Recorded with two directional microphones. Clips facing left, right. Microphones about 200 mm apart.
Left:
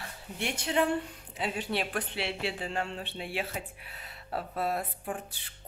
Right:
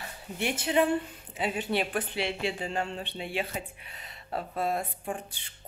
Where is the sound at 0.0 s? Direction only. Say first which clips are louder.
Right 3 dB; 5° right (ahead or behind).